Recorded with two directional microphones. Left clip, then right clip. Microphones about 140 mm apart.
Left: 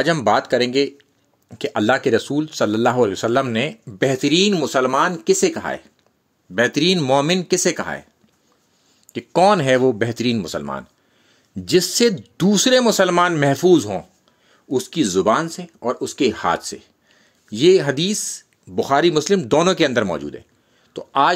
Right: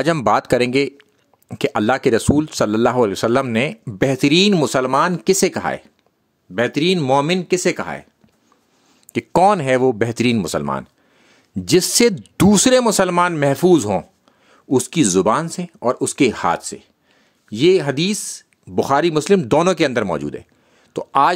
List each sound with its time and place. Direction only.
0.0 s speech: 70° right (ahead or behind)
1.5 s speech: 50° right (ahead or behind)
2.2 s speech: 50° right (ahead or behind); by 5.9 s 30° right (ahead or behind)
6.5 s speech: 15° right (ahead or behind)
9.0 s speech: 50° right (ahead or behind)
15.2 s speech: 40° right (ahead or behind)